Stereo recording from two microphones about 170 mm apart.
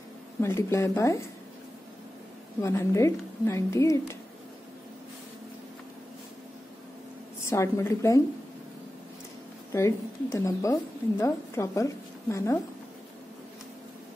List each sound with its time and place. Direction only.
0.4 s speech: 15° left (ahead or behind)
2.6 s speech: 15° left (ahead or behind)
7.4 s speech: 15° left (ahead or behind)
9.7 s speech: 15° left (ahead or behind)